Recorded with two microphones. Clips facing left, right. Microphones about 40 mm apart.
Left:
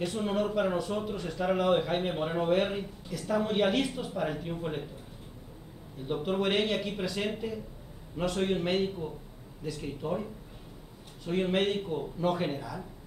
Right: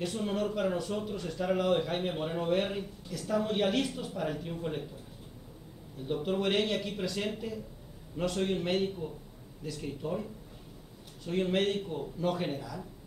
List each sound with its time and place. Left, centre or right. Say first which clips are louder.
0.0 s speech: left 2 dB; centre
6.0 s speech: left 1 dB; centre